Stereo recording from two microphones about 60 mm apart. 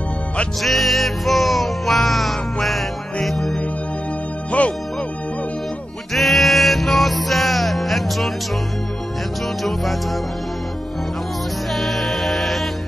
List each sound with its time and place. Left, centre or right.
0.6 s music: centre
4.5 s music: left
6.1 s music: centre
9.6 s music: centre
11.7 s music: centre